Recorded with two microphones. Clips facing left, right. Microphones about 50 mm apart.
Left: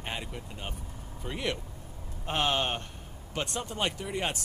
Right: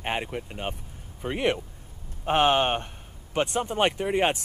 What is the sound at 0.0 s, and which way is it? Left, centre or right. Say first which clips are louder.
Speech: right 8 dB; right.